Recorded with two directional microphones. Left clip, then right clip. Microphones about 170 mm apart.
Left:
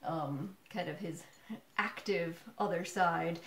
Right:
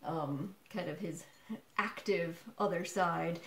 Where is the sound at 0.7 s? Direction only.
10° right (ahead or behind).